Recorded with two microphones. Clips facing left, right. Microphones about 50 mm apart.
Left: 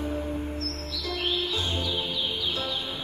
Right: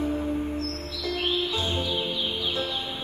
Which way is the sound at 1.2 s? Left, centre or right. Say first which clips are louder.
Right 1 dB; right.